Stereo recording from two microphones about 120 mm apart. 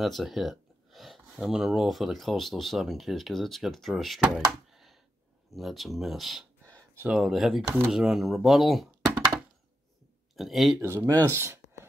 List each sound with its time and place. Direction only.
0.0 s speech: centre (ahead or behind)
4.5 s a sound: centre (ahead or behind)
5.5 s speech: centre (ahead or behind)
7.6 s speech: 20° right (ahead or behind)
7.9 s speech: centre (ahead or behind)
10.3 s speech: centre (ahead or behind)
10.8 s speech: 20° right (ahead or behind)